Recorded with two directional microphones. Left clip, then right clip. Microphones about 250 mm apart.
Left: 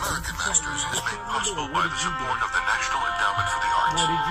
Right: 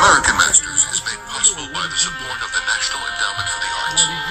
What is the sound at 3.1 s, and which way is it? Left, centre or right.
Music, right.